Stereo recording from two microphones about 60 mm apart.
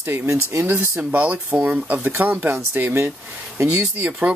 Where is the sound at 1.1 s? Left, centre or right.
Right.